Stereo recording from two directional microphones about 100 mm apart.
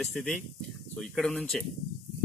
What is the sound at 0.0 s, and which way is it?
Speech, 5° left (ahead or behind).